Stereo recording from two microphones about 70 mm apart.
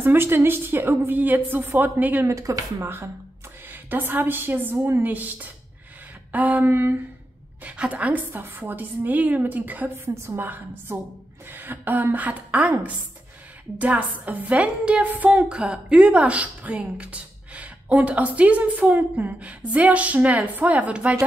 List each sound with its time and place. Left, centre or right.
0.0 s a woman's voice: right
2.2 s speech: right
3.7 s a woman's voice: right
7.6 s a woman's voice: centre
10.0 s a woman's voice: right
10.4 s a woman's voice: right